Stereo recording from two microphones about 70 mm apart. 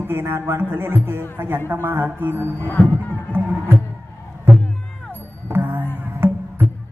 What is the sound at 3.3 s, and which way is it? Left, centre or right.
Music, right.